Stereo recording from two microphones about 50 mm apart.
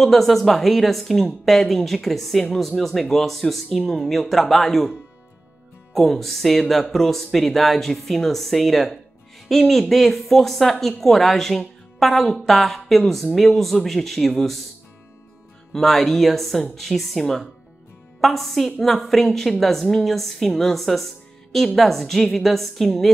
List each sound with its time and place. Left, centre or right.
0.0 s speech: centre
5.9 s speech: centre
15.7 s speech: centre